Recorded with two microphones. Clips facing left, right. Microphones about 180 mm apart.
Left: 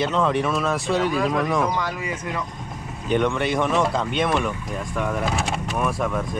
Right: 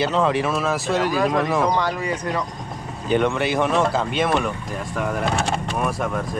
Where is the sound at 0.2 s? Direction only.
Centre (ahead or behind).